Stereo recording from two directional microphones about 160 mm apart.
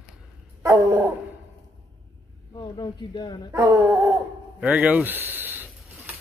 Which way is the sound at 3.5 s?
10° right (ahead or behind).